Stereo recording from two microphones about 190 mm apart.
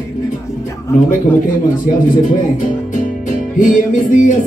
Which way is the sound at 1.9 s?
45° left (ahead or behind).